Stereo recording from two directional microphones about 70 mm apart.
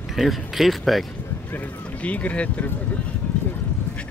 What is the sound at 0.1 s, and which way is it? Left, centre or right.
Speech, centre.